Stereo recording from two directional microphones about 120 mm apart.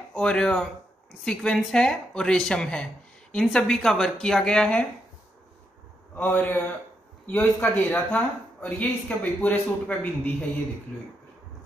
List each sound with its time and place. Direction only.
0.1 s speech: 10° left (ahead or behind)
6.1 s speech: 15° left (ahead or behind)